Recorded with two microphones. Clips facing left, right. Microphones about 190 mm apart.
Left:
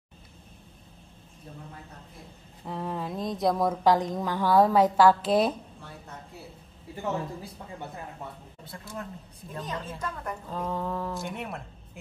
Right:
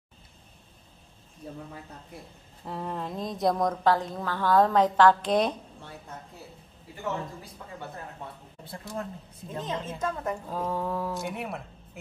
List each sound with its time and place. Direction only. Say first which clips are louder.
2.6 s speech: left 1 dB; centre (ahead or behind)
3.8 s a woman's voice: left 2 dB; 15° left (ahead or behind)
8.6 s a woman's voice: right 3 dB; 30° right (ahead or behind)
10.5 s speech: left 1 dB; 10° right (ahead or behind)